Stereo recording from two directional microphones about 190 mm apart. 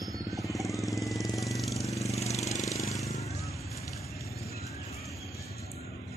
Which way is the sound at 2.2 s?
35° left (ahead or behind).